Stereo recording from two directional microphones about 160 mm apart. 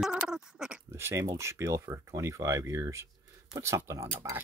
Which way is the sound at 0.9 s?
15° right (ahead or behind).